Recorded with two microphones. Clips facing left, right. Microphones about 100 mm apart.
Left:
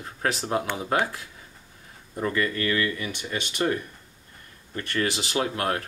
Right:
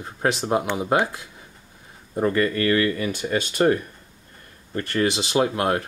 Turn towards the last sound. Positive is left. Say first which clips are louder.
# right 5 dB
turn(degrees=-20)  # may be behind; listen again after turning